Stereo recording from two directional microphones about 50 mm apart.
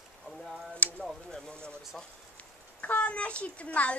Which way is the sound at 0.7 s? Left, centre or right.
Left.